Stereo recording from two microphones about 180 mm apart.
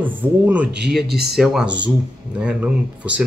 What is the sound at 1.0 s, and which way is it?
Speech, 60° right (ahead or behind).